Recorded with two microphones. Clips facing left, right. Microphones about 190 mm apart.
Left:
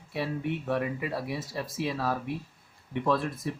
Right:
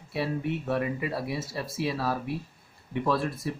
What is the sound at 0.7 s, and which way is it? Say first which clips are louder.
Speech: right 1 dB; 10° right (ahead or behind).